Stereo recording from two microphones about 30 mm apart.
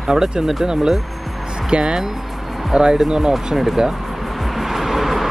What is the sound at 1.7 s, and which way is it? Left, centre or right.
Speech, right.